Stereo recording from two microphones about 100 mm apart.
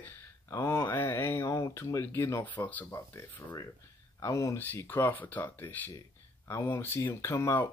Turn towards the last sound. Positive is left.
turn(degrees=25)  # may be behind; listen again after turning